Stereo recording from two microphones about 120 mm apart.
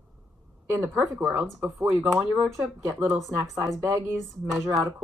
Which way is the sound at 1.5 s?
Centre (ahead or behind).